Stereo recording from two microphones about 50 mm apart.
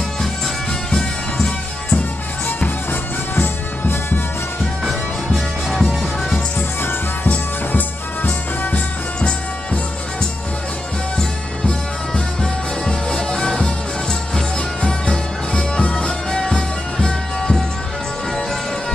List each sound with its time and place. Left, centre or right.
0.9 s music: centre
2.9 s music: left
4.8 s music: centre
7.7 s music: left
12.8 s music: centre